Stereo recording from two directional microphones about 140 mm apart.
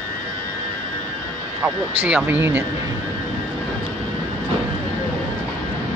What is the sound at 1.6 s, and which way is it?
Speech, 15° right (ahead or behind).